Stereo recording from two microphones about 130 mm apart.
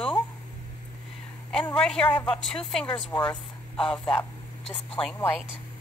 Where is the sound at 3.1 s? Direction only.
35° left (ahead or behind).